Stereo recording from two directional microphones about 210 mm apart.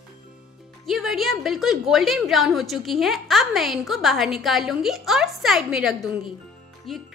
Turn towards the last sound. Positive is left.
turn(degrees=0)  # may be behind; listen again after turning